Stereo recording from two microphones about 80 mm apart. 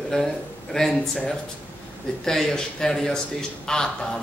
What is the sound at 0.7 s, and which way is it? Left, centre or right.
Speech, centre.